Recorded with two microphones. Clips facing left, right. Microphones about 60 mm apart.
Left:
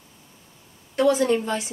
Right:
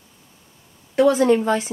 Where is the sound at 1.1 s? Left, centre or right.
Right.